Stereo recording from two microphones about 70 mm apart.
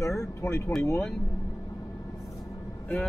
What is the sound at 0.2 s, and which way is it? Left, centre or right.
Speech, left.